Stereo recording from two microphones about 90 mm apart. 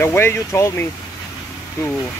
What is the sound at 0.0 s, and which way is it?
Speech, 25° left (ahead or behind).